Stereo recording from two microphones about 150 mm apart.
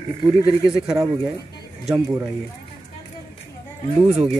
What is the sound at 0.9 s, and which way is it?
Speech, 20° right (ahead or behind).